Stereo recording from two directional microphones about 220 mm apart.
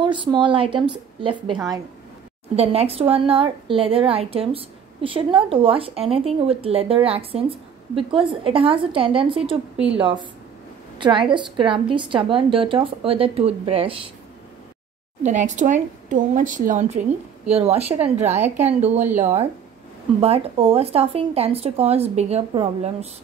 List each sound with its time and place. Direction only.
0.0 s speech: 20° right (ahead or behind)
2.5 s speech: 30° right (ahead or behind)
9.8 s a woman's voice: 5° right (ahead or behind)
11.0 s speech: 20° right (ahead or behind)
15.2 s speech: 35° right (ahead or behind)